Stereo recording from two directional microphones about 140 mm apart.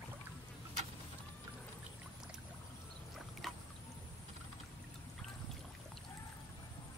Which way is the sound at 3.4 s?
Centre (ahead or behind).